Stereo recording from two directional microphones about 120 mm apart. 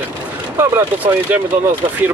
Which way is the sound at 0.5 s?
20° right (ahead or behind).